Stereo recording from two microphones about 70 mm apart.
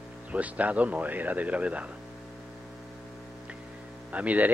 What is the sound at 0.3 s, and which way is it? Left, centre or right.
A man's voice, right.